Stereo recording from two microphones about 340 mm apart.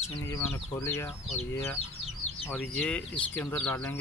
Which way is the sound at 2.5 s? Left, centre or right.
Centre.